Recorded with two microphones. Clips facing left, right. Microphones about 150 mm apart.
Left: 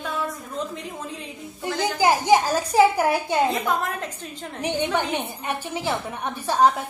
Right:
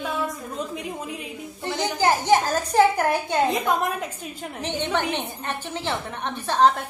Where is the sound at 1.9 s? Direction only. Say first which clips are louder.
Left 1 dB; 10° left (ahead or behind).